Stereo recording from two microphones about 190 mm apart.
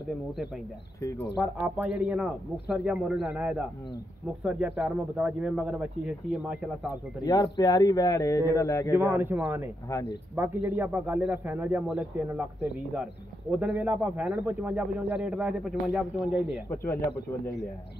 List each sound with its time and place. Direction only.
1.3 s speech: 5° right (ahead or behind)
7.2 s speech: 20° left (ahead or behind)
8.9 s speech: 10° right (ahead or behind)